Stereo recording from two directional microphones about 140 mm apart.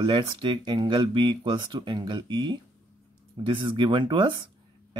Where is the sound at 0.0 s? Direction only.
35° right (ahead or behind).